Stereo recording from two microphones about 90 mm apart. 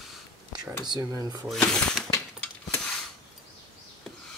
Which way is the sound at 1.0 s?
45° right (ahead or behind).